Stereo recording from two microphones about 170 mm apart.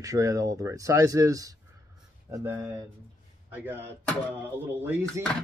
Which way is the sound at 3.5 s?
15° right (ahead or behind).